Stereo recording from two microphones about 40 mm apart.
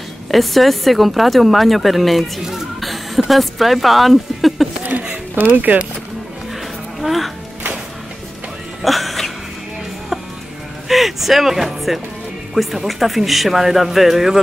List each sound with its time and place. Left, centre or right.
0.3 s speech: centre
5.3 s speech: right
7.0 s speech: centre
8.8 s music: centre
10.9 s speech: centre